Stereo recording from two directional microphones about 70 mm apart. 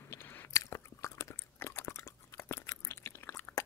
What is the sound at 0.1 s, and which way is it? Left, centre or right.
Biting, left.